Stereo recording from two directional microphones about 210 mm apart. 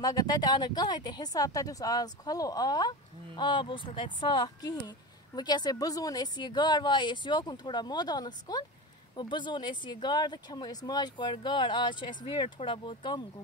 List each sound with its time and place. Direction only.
0.0 s speech: 15° left (ahead or behind)